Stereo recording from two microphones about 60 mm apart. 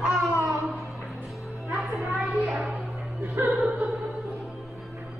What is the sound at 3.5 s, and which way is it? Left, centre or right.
Music, centre.